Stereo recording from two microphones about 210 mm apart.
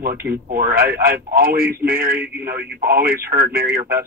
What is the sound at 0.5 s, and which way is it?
Speech, 45° right (ahead or behind).